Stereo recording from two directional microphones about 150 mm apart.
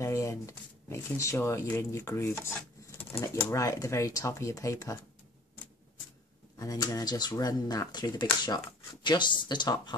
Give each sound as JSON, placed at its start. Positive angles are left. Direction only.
{"t": 0.0, "sound": "speech", "side_deg": 20}
{"t": 6.6, "sound": "speech", "side_deg": 25}